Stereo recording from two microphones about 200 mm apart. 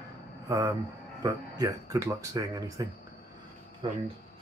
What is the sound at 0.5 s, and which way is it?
Speech, 20° right (ahead or behind).